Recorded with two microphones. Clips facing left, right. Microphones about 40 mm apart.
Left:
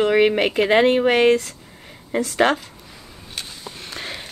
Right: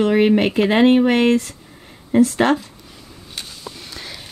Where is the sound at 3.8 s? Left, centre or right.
Left.